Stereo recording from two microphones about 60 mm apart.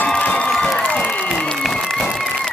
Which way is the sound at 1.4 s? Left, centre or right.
Centre.